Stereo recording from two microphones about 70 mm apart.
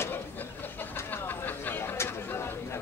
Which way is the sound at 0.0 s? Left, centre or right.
Left.